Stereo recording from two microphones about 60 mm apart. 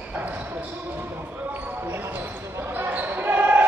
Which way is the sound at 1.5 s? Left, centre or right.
Right.